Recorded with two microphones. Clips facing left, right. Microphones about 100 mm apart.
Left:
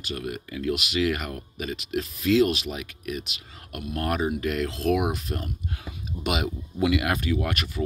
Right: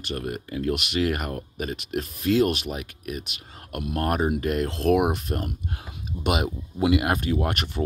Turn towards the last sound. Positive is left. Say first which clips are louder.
# right 2 dB
turn(degrees=-45)  # may be behind; listen again after turning